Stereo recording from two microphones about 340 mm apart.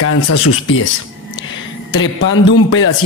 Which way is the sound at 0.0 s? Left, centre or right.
Left.